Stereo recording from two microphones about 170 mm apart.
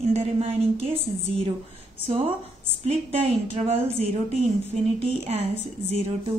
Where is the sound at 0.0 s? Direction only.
35° right (ahead or behind).